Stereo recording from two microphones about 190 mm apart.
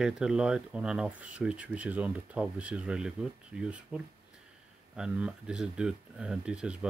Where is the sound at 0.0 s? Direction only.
5° right (ahead or behind).